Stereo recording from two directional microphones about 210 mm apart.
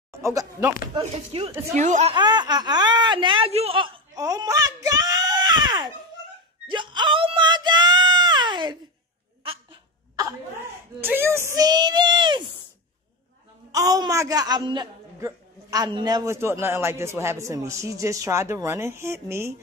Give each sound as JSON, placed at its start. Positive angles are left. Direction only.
{"t": 0.1, "sound": "speech", "side_deg": -15}
{"t": 0.9, "sound": "speech", "side_deg": -25}
{"t": 2.1, "sound": "speech", "side_deg": -20}
{"t": 4.8, "sound": "a sound", "side_deg": -15}
{"t": 9.4, "sound": "dog", "side_deg": -25}
{"t": 11.0, "sound": "speech", "side_deg": -10}
{"t": 13.7, "sound": "a man's voice", "side_deg": -15}